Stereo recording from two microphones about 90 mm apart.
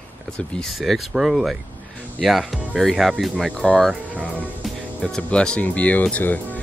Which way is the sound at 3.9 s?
15° right (ahead or behind).